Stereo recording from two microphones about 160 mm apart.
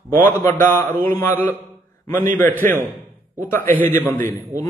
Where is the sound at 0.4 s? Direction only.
15° left (ahead or behind).